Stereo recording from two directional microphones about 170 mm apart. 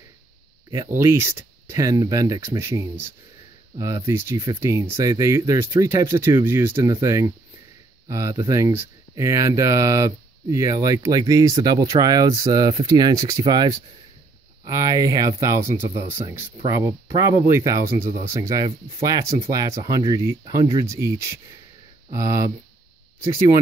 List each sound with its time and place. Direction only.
0.8 s speech: 15° right (ahead or behind)